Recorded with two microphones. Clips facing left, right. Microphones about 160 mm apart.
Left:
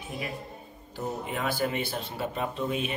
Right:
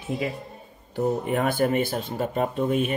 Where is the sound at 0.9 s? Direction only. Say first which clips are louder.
Right 9 dB; 55° right (ahead or behind).